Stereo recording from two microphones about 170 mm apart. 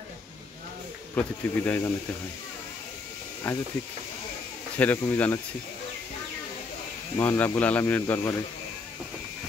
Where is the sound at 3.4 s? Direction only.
10° left (ahead or behind).